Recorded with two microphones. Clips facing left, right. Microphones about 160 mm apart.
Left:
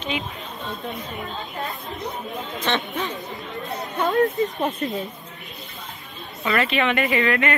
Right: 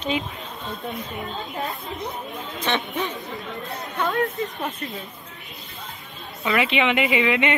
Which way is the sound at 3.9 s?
25° left (ahead or behind).